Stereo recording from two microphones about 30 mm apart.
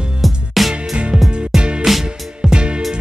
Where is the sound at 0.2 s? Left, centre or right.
Centre.